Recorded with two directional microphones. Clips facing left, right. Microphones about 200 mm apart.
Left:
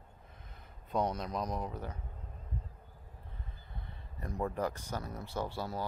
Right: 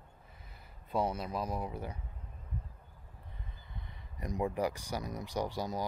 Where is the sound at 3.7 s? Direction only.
15° right (ahead or behind).